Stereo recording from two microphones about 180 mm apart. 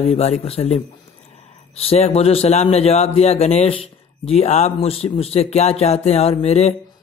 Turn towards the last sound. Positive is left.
turn(degrees=35)  # may be behind; listen again after turning